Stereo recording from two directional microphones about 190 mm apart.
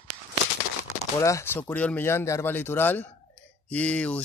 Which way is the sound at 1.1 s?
15° left (ahead or behind).